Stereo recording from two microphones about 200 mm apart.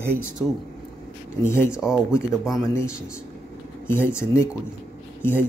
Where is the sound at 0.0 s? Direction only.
10° right (ahead or behind).